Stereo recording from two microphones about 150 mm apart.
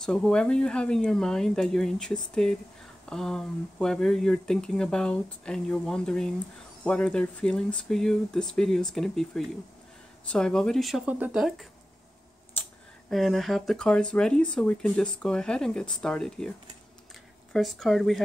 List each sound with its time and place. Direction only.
0.0 s speech: 5° left (ahead or behind)
12.6 s a sound: 10° left (ahead or behind)
13.1 s speech: centre (ahead or behind)